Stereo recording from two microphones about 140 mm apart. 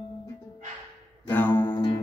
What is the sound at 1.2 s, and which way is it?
Music, 15° left (ahead or behind).